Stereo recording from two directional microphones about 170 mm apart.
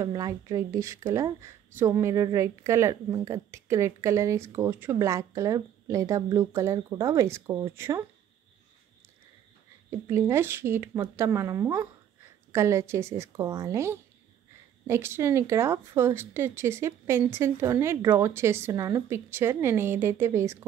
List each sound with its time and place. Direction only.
0.0 s a woman's voice: 20° right (ahead or behind)
9.8 s a woman's voice: 15° right (ahead or behind)